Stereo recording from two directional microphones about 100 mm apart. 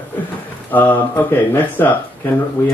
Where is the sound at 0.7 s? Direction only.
20° left (ahead or behind).